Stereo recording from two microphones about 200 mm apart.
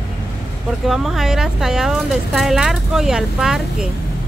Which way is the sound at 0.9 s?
Centre (ahead or behind).